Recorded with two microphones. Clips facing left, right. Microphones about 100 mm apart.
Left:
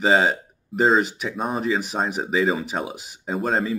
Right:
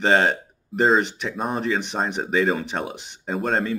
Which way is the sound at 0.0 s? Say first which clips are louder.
Even; 5° left (ahead or behind).